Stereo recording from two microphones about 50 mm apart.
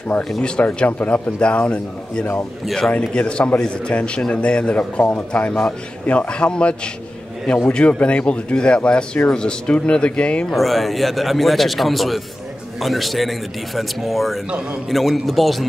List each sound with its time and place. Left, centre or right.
0.7 s speech: left
1.4 s a man's voice: left
2.6 s speech: centre
3.0 s a man's voice: centre
10.5 s speech: centre